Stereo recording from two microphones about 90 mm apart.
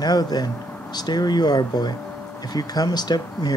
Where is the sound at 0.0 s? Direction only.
50° left (ahead or behind).